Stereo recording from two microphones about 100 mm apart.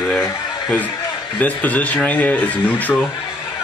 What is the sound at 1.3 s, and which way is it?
Speech, 15° left (ahead or behind).